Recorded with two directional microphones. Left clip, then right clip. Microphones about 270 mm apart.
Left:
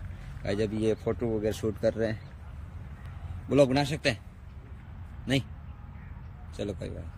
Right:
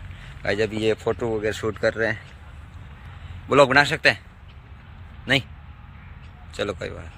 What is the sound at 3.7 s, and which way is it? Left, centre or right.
Speech, centre.